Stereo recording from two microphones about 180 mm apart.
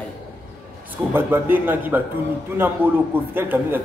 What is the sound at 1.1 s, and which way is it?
Speech, 10° right (ahead or behind).